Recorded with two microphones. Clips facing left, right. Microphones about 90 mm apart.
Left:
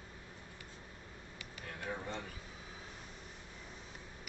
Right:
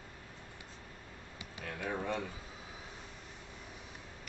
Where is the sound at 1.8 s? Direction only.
90° right.